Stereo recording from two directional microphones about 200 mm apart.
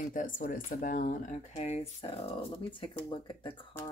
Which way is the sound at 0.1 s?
40° left (ahead or behind).